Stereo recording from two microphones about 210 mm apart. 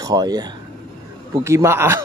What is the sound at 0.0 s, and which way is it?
A man's voice, 20° right (ahead or behind).